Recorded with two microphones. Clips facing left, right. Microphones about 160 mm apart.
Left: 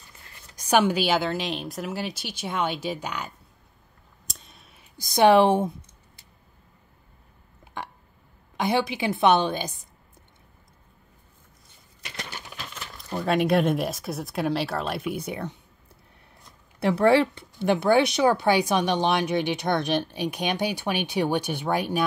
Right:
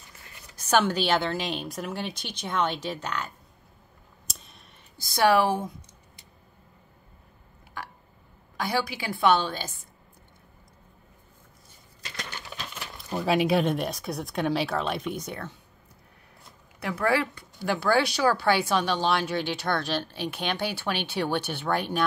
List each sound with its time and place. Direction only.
0.7 s speech: 10° left (ahead or behind)
4.3 s clicking: centre (ahead or behind)
4.9 s a woman's voice: 20° left (ahead or behind)
7.6 s burping: 25° left (ahead or behind)
8.5 s a woman's voice: 20° left (ahead or behind)
12.7 s crumpling: 10° right (ahead or behind)
13.0 s speech: 5° right (ahead or behind); by 15.5 s 15° left (ahead or behind)
16.8 s speech: 30° left (ahead or behind); by 22.0 s 10° left (ahead or behind)